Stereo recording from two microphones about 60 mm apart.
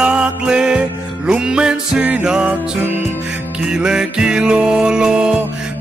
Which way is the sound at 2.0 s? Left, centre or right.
Right.